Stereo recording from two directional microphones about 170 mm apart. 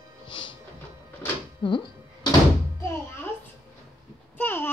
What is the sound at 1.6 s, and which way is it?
Speech, 30° left (ahead or behind).